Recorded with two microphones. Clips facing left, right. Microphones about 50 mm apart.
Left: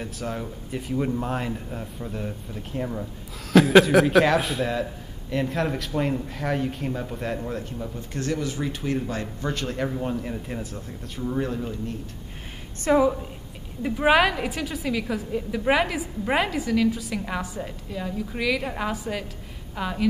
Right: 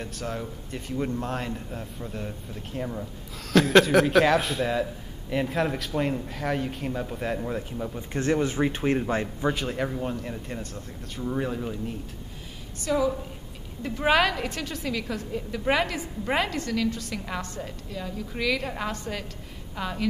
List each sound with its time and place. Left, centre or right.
0.0 s a man's voice: centre
8.1 s speech: right
9.5 s a man's voice: centre
12.8 s a woman's voice: left
13.8 s a woman's voice: centre